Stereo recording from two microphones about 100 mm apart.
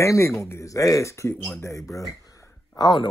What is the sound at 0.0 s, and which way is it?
Speech, 30° left (ahead or behind).